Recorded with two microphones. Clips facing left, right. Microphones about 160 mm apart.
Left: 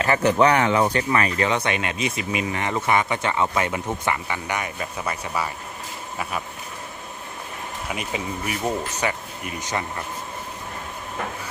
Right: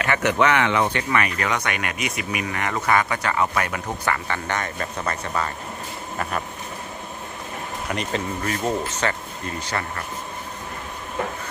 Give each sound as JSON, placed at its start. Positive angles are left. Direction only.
{"t": 0.0, "sound": "speech", "side_deg": 35}
{"t": 7.9, "sound": "speech", "side_deg": 10}